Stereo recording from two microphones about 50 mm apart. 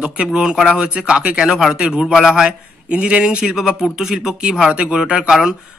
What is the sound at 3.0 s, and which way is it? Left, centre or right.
Speech, right.